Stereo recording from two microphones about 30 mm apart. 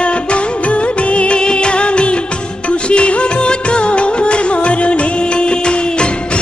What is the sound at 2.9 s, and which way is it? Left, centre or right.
Music, left.